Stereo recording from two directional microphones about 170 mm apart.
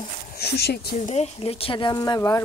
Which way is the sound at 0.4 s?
75° left (ahead or behind).